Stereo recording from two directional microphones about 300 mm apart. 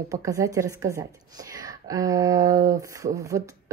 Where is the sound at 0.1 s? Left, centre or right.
Centre.